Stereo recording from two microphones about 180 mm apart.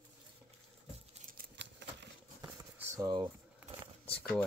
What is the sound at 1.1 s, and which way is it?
Keys jangling, 45° right (ahead or behind).